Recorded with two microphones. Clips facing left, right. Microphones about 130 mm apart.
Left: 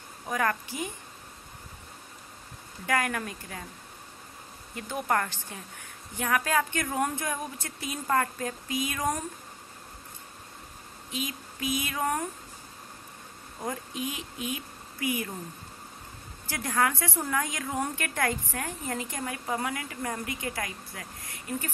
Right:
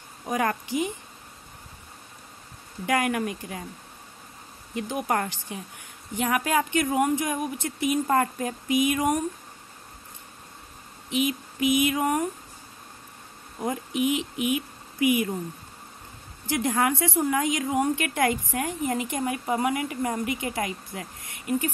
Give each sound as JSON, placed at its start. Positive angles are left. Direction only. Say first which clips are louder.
{"t": 0.3, "sound": "a woman's voice", "louder": "right 3 dB", "side_deg": -20}
{"t": 2.9, "sound": "a woman's voice", "louder": "right 4 dB", "side_deg": -20}
{"t": 4.7, "sound": "a woman's voice", "louder": "right 2 dB", "side_deg": -15}
{"t": 11.1, "sound": "speech", "louder": "right 10 dB", "side_deg": -20}
{"t": 13.6, "sound": "speech", "louder": "right 7 dB", "side_deg": -20}
{"t": 16.4, "sound": "a woman's voice", "louder": "right 4 dB", "side_deg": -20}